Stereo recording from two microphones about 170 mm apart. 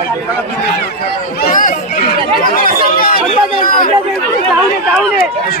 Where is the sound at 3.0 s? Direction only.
60° left (ahead or behind).